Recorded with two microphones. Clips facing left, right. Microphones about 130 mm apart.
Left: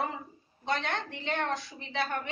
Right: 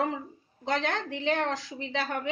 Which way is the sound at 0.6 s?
90° right.